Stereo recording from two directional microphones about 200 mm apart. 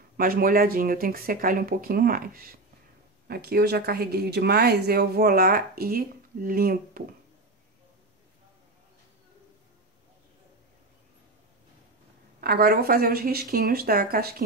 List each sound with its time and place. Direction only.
0.2 s speech: 45° right (ahead or behind)
12.4 s speech: 50° right (ahead or behind)